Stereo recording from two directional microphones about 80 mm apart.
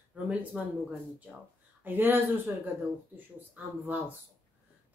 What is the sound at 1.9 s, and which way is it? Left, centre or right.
Speech, right.